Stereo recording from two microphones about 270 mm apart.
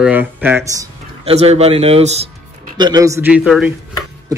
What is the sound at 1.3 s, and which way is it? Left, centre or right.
Speech, right.